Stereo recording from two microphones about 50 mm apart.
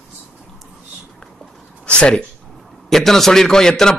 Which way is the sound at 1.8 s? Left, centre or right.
Left.